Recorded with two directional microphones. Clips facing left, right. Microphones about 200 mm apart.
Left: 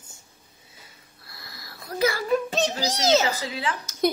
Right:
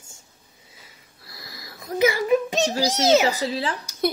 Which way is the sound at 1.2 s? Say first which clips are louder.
Right 3 dB; 20° right (ahead or behind).